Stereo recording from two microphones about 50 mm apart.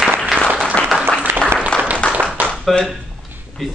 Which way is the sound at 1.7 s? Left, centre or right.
Left.